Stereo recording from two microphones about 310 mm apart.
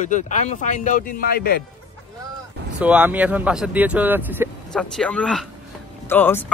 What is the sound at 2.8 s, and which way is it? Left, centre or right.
Speech, centre.